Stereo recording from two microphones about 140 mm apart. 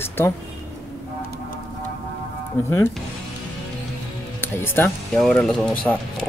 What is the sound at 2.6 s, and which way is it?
Speech, 20° left (ahead or behind).